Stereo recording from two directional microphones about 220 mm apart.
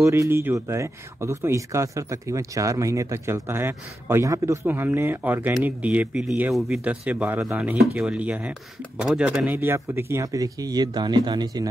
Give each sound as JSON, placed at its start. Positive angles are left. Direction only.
{"t": 0.0, "sound": "speech", "side_deg": -10}